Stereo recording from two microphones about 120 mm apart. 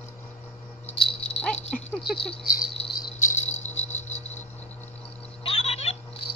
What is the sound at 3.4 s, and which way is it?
Insect, 70° left (ahead or behind).